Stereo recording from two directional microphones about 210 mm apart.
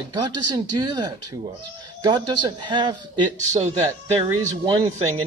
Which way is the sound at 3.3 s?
35° right (ahead or behind).